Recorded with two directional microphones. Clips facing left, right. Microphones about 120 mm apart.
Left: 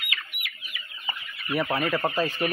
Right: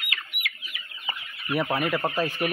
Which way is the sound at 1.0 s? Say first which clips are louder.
Right 1 dB; 20° right (ahead or behind).